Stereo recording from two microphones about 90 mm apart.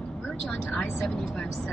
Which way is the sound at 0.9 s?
5° left (ahead or behind).